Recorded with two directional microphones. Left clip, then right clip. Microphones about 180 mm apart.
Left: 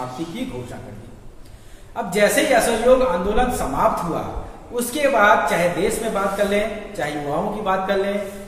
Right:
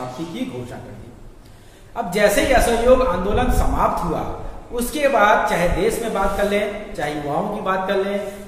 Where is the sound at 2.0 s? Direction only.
20° right (ahead or behind).